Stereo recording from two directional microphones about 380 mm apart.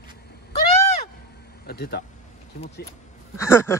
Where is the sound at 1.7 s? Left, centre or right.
Left.